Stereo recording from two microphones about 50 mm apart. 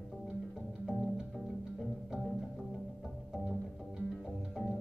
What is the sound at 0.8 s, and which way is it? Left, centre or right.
Music, centre.